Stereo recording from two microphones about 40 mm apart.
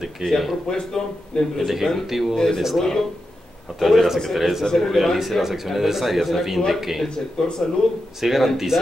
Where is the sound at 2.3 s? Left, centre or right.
Centre.